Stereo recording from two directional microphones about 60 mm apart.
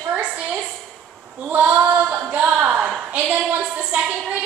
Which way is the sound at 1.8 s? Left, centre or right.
Right.